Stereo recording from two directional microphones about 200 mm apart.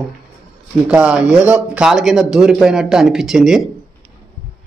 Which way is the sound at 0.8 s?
5° right (ahead or behind).